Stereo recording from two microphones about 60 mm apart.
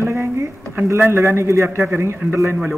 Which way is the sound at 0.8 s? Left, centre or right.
Right.